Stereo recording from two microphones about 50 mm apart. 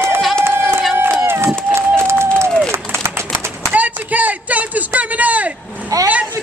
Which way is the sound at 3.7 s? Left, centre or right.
Right.